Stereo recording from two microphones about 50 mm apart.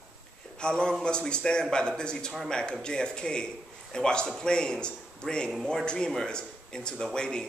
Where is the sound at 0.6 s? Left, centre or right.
Centre.